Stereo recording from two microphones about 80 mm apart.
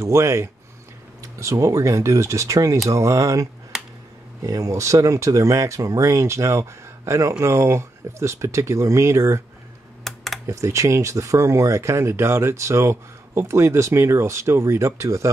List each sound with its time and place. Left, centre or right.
0.0 s speech: right
10.0 s computer keyboard: centre
10.4 s speech: right